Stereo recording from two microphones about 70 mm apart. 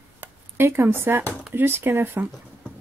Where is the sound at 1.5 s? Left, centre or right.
Right.